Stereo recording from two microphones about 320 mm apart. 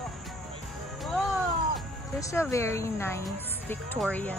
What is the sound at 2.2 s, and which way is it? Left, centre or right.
Speech, centre.